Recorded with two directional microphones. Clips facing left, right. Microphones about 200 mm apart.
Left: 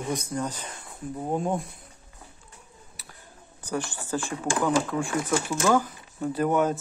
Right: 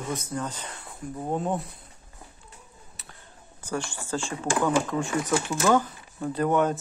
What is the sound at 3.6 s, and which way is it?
Speech, 15° left (ahead or behind).